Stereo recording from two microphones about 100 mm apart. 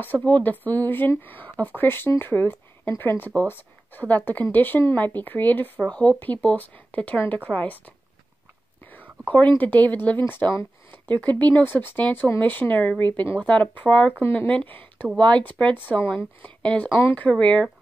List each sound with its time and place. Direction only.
0.0 s speech: 15° left (ahead or behind)
9.6 s speech: 15° left (ahead or behind)